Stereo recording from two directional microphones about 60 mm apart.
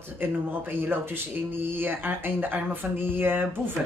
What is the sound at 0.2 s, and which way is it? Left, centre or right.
Speech, right.